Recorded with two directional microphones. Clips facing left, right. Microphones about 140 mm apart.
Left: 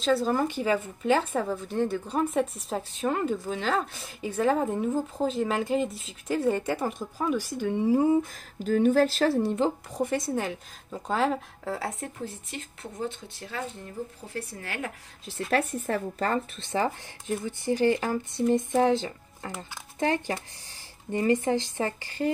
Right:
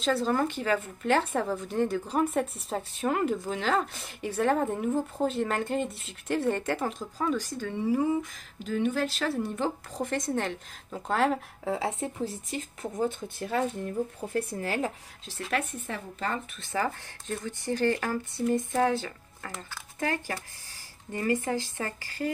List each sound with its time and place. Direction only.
0.0 s speech: centre (ahead or behind); by 9.7 s 30° left (ahead or behind)
9.9 s speech: 10° left (ahead or behind)
11.6 s speech: 20° right (ahead or behind)
12.3 s a woman's voice: 40° right (ahead or behind)
15.5 s speech: 40° left (ahead or behind)
16.5 s speech: 25° left (ahead or behind)
17.3 s speech: 15° left (ahead or behind)